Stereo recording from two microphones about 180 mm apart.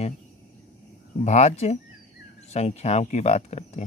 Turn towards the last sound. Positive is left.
turn(degrees=40)  # may be behind; listen again after turning